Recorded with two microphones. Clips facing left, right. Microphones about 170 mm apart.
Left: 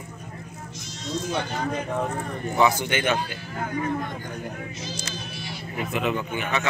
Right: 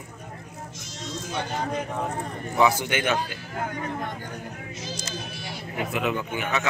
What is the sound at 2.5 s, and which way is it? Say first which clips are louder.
Speech: even; 5° right (ahead or behind).